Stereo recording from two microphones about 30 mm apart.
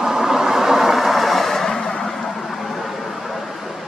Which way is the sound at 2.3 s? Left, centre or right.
Centre.